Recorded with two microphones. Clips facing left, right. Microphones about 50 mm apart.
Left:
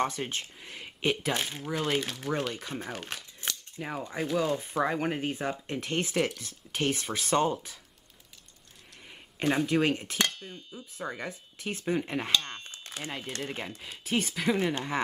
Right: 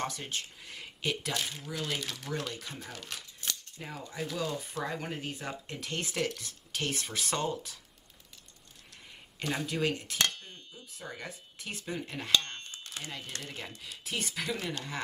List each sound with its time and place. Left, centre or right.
0.0 s speech: left
3.8 s speech: left
9.4 s speech: left
10.2 s dishes: centre
11.0 s speech: left
12.3 s a sound: centre
12.8 s speech: left